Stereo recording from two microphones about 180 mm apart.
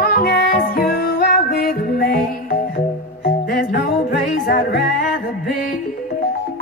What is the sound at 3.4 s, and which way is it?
Music, 55° left (ahead or behind).